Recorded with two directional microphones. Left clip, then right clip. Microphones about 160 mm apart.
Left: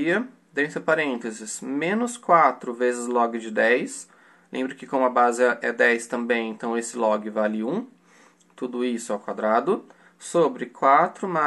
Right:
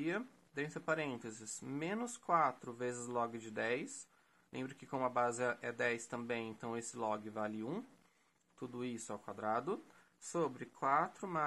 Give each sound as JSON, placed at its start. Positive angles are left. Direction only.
{"t": 0.0, "sound": "speech", "side_deg": -30}